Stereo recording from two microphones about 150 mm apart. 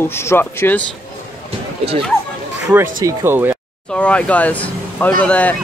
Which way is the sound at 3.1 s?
15° right (ahead or behind).